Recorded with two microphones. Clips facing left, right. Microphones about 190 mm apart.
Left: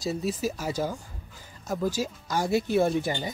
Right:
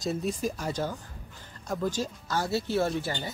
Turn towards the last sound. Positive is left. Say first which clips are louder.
# left 4 dB
turn(degrees=15)  # may be behind; listen again after turning